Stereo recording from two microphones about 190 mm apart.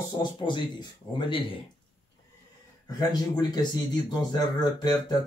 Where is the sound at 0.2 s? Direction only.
25° left (ahead or behind).